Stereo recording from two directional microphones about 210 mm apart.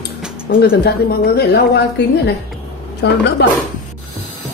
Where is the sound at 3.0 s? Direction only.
55° left (ahead or behind).